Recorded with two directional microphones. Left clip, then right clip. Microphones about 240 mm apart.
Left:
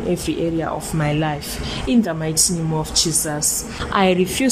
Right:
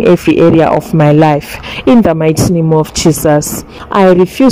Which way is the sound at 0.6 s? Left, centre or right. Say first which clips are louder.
Right 15 dB; right.